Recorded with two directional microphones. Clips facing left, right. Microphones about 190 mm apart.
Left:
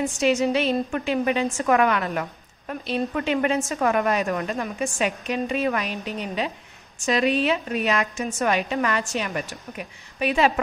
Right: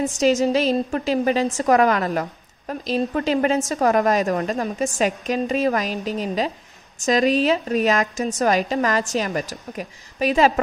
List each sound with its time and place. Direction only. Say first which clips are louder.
0.1 s a woman's voice: right 4 dB; 40° right (ahead or behind)